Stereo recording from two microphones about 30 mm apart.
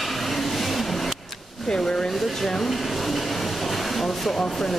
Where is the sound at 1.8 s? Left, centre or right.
Centre.